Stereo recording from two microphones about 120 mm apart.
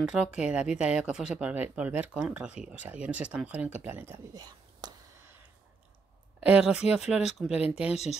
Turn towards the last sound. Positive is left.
turn(degrees=-10)  # may be behind; listen again after turning